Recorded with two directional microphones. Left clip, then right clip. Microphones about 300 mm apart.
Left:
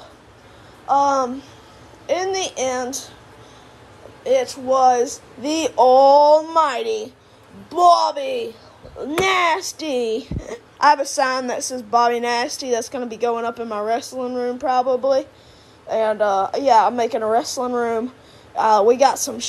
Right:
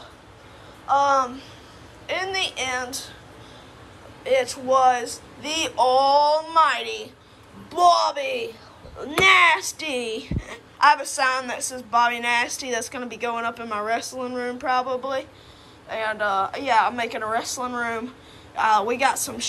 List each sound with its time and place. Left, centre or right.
0.8 s speech: centre
4.2 s speech: centre